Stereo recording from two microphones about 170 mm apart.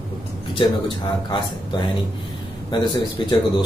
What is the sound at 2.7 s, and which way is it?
Speech, 25° left (ahead or behind).